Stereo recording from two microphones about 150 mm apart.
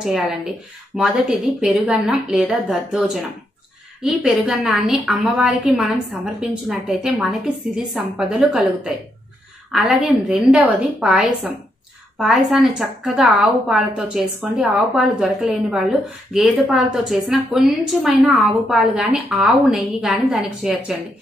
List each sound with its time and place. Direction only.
0.0 s a woman's voice: centre (ahead or behind)